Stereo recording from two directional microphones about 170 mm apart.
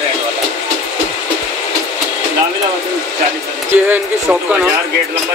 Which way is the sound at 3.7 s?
10° right (ahead or behind).